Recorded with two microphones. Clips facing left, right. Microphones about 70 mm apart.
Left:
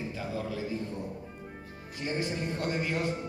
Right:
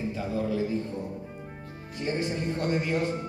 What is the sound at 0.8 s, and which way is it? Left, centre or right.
Speech, right.